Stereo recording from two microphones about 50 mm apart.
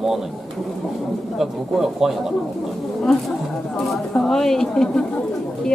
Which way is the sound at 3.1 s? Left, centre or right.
Centre.